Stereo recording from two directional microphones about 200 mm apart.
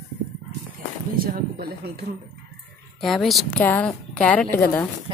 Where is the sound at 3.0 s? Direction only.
Centre (ahead or behind).